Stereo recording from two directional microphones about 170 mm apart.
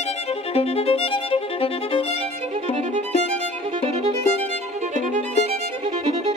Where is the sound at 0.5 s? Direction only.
35° left (ahead or behind).